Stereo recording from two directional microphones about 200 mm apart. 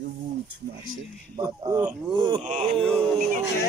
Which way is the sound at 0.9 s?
90° right.